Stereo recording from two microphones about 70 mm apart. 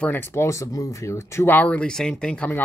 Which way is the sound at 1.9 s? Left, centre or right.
Centre.